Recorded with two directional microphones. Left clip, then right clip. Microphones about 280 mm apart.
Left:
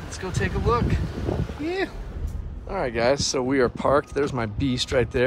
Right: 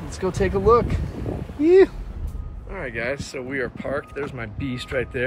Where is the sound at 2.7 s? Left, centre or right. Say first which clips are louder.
Left 5 dB; centre.